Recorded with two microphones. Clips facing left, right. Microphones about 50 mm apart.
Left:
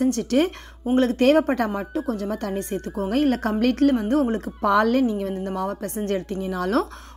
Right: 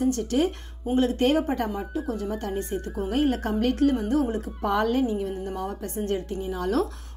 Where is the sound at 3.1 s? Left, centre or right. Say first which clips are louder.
Left 3 dB; left.